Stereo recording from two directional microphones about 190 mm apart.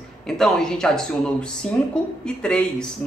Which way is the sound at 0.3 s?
5° left (ahead or behind).